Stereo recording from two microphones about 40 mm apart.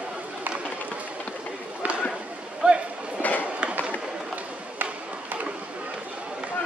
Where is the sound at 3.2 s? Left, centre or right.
Left.